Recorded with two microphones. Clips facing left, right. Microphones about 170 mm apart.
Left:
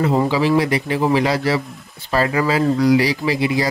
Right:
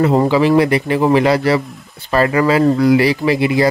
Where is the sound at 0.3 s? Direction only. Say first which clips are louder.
Right 5 dB; 60° right (ahead or behind).